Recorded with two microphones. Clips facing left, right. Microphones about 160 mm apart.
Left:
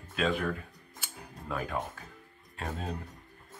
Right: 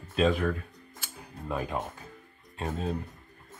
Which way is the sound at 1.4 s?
20° right (ahead or behind).